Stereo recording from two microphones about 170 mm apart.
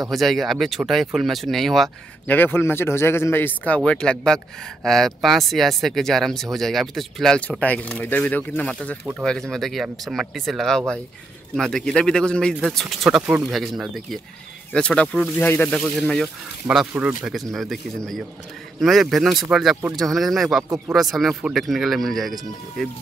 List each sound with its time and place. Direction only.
0.1 s speech: centre (ahead or behind)
2.3 s a man's voice: 10° left (ahead or behind)